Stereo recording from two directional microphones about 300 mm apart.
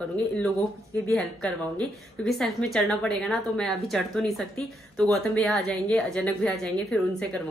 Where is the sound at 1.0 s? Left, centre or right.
Centre.